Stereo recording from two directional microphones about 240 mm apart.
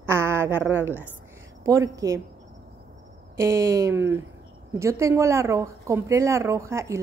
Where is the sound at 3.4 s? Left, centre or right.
Centre.